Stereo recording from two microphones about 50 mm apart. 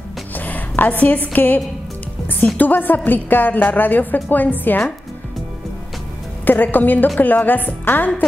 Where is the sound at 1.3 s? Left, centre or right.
Left.